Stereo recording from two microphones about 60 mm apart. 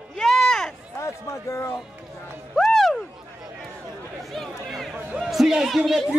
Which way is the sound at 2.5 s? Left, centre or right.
Centre.